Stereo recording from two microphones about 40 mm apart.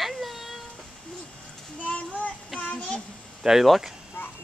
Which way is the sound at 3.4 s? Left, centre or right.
Centre.